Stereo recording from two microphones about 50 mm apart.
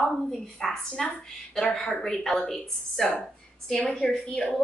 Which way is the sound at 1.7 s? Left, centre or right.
Centre.